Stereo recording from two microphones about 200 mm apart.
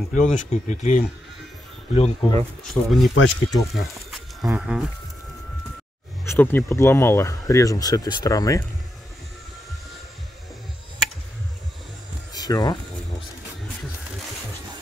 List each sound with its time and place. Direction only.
0.1 s speech: 35° left (ahead or behind)
2.6 s speech: centre (ahead or behind)
6.2 s speech: 10° left (ahead or behind)
12.4 s speech: 20° left (ahead or behind)